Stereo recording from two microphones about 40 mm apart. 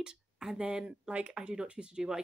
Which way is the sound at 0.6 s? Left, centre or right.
Right.